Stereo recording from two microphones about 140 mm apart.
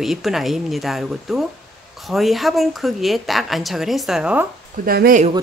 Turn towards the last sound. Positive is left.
turn(degrees=-80)